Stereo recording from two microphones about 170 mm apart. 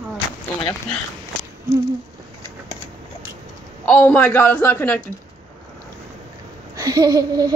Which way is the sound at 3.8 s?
10° left (ahead or behind).